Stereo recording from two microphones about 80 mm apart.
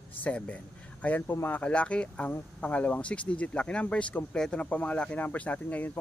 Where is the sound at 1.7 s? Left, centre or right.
Centre.